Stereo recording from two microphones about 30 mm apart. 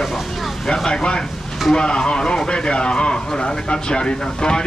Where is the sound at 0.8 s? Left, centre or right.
Left.